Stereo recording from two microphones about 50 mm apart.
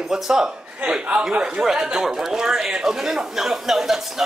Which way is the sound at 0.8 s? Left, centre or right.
Right.